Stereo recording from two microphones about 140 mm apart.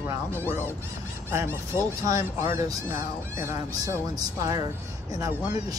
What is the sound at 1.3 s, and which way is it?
Speech, 15° right (ahead or behind).